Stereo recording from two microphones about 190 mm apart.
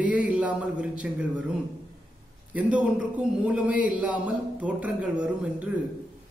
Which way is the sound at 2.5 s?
5° right (ahead or behind).